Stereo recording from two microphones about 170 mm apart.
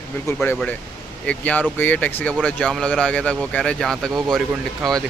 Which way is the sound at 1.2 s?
10° left (ahead or behind).